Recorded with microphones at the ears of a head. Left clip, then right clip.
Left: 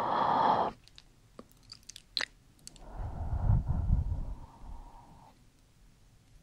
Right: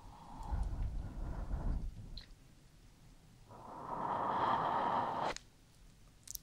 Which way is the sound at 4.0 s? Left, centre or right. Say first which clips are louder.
Right 18 dB; right.